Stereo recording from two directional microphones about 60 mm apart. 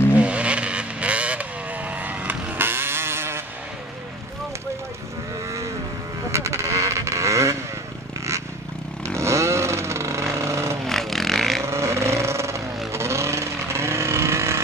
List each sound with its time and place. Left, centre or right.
0.1 s vehicle: right
6.3 s a sound: right
9.0 s vehicle: right
10.9 s vehicle: centre
11.6 s vehicle: right